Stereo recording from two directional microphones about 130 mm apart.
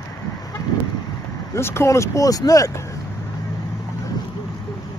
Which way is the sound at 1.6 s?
20° left (ahead or behind).